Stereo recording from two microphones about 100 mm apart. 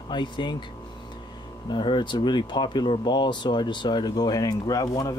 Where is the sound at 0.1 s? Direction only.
50° left (ahead or behind).